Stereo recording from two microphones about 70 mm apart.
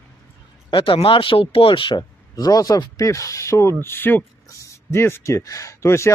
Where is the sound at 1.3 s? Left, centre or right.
Left.